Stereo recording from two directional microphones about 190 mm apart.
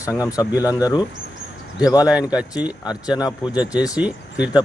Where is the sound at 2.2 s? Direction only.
20° left (ahead or behind).